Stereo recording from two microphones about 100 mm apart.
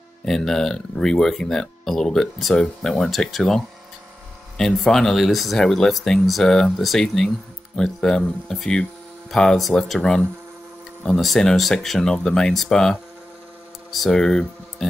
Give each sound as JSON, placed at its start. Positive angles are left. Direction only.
{"t": 0.2, "sound": "speech", "side_deg": 5}